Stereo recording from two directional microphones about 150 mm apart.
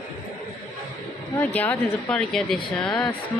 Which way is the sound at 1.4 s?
10° left (ahead or behind).